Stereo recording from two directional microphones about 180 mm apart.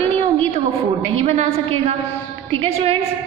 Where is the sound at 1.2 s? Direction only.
35° right (ahead or behind).